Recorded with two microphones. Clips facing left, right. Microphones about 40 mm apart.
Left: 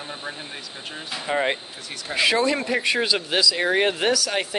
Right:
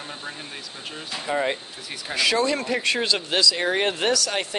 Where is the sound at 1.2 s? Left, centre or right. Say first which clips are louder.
Left 1 dB; left.